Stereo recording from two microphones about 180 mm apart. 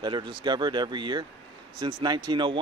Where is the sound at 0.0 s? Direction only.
25° right (ahead or behind).